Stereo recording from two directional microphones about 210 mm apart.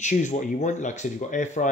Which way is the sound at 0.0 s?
35° left (ahead or behind).